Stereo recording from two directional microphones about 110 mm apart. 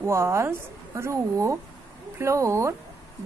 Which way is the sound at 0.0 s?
25° right (ahead or behind).